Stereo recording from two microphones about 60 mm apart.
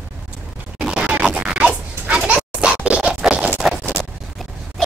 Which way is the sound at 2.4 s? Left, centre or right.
Centre.